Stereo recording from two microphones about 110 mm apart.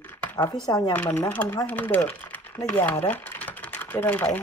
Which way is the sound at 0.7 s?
35° left (ahead or behind).